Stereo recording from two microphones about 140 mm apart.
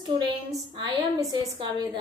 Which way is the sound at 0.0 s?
30° right (ahead or behind).